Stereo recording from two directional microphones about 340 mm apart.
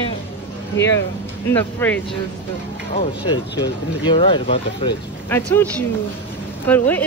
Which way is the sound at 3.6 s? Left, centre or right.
Centre.